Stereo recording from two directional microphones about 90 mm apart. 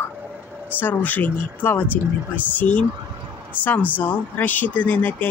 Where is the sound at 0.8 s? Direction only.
20° left (ahead or behind).